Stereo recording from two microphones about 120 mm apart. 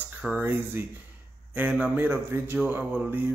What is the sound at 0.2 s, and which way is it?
Speech, 15° right (ahead or behind).